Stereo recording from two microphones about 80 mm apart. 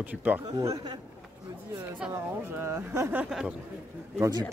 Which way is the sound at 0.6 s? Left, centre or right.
Right.